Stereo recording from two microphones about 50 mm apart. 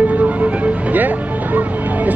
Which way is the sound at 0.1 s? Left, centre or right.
Right.